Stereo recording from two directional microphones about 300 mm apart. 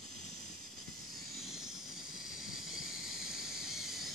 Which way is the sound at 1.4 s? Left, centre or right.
Centre.